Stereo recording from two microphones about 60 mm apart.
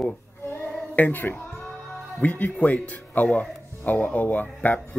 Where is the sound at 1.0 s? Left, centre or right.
Left.